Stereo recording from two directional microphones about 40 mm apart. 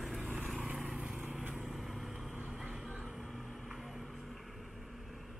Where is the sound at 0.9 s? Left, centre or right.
Centre.